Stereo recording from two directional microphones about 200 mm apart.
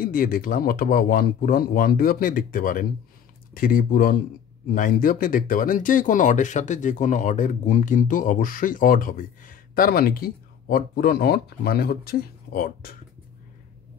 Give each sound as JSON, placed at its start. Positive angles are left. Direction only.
{"t": 0.0, "sound": "speech", "side_deg": 45}